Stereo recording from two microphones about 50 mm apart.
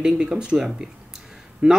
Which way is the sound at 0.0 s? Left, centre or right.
Centre.